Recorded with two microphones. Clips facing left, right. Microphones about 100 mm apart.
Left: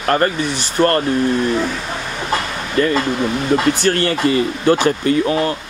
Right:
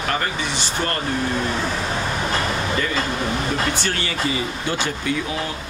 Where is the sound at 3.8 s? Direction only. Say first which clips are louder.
Left 8 dB; 50° left (ahead or behind).